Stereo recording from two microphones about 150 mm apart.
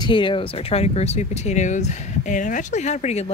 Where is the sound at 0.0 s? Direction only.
35° left (ahead or behind).